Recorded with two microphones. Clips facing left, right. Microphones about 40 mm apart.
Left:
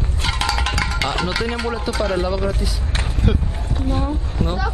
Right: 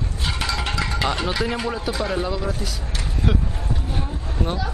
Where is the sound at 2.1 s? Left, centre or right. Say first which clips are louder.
Left 4 dB; centre.